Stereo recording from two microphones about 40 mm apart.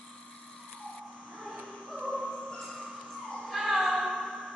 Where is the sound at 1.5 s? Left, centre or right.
Right.